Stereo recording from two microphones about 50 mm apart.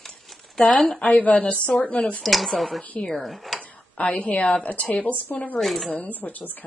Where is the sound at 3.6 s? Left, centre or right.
Left.